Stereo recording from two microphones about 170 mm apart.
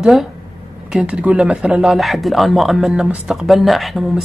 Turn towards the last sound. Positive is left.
turn(degrees=0)  # may be behind; listen again after turning